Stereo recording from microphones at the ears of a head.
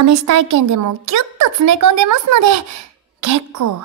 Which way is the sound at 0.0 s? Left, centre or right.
Right.